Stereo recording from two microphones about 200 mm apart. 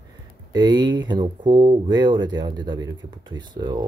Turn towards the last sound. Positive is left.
turn(degrees=-20)  # may be behind; listen again after turning